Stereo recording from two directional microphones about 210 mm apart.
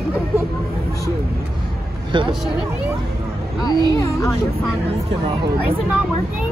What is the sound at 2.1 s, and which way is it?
Speech, 25° right (ahead or behind).